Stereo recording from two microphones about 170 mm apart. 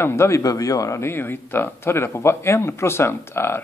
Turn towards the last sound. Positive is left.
turn(degrees=15)  # may be behind; listen again after turning